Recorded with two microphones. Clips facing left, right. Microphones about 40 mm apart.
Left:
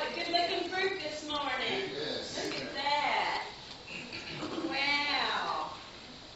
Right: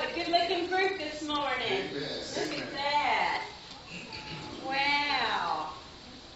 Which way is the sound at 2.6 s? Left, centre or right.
Centre.